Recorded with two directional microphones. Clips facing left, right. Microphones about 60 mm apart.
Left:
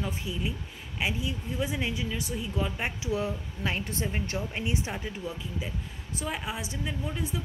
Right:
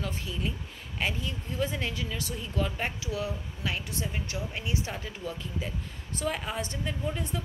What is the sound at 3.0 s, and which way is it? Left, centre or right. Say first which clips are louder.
Speech: left 3 dB; left.